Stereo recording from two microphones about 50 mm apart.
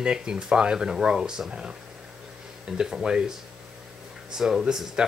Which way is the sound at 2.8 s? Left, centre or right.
Centre.